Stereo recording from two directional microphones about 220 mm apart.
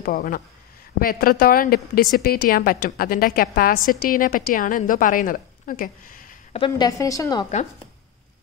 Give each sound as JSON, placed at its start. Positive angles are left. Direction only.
{"t": 0.0, "sound": "a woman's voice", "side_deg": 40}
{"t": 6.6, "sound": "a woman's voice", "side_deg": 15}